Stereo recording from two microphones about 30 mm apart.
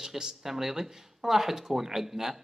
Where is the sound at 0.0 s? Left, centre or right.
Centre.